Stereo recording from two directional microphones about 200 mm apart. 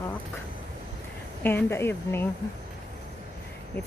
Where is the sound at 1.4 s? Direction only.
10° left (ahead or behind).